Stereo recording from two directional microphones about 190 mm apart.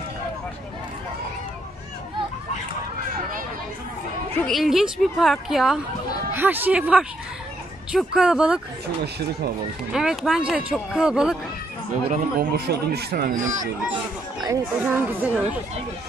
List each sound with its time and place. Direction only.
4.4 s a woman's voice: centre (ahead or behind)
9.9 s a woman's voice: 5° right (ahead or behind)
12.1 s speech: 50° right (ahead or behind)
14.4 s speech: 15° right (ahead or behind)